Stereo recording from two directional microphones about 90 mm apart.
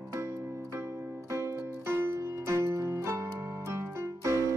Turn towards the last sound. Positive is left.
turn(degrees=-35)  # may be behind; listen again after turning